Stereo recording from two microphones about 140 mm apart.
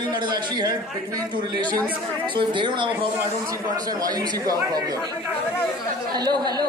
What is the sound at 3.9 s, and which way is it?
Speech, 25° right (ahead or behind).